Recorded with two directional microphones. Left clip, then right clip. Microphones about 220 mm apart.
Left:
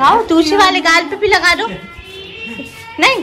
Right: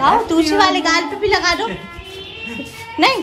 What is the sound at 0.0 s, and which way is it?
Speech, 10° right (ahead or behind).